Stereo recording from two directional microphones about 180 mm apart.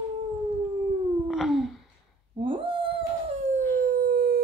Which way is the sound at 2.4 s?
30° right (ahead or behind).